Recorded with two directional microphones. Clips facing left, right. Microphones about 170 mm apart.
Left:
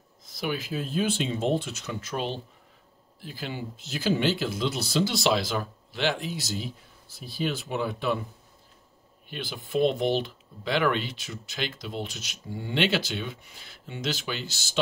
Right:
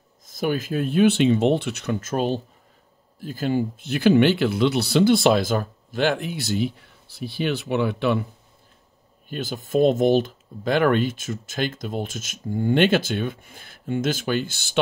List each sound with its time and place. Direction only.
0.3 s speech: 45° right (ahead or behind); by 2.0 s 65° right (ahead or behind)
2.0 s speech: 45° right (ahead or behind); by 8.2 s 70° right (ahead or behind)
9.3 s speech: 45° right (ahead or behind)